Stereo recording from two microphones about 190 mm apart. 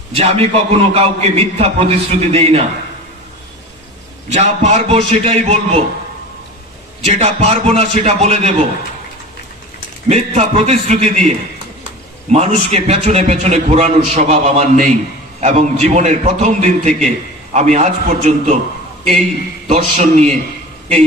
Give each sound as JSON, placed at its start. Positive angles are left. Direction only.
{"t": 0.1, "sound": "a man's voice", "side_deg": -30}
{"t": 4.3, "sound": "a man's voice", "side_deg": -35}
{"t": 7.1, "sound": "a man's voice", "side_deg": -35}
{"t": 10.0, "sound": "a man's voice", "side_deg": -35}
{"t": 19.7, "sound": "a man's voice", "side_deg": -35}